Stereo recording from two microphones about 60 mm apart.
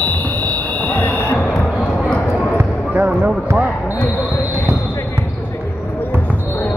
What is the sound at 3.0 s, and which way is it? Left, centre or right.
Speech, right.